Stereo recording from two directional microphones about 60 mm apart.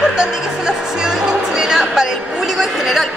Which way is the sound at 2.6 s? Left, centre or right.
Centre.